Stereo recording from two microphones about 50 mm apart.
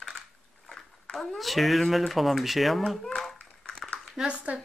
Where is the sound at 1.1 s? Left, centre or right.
Centre.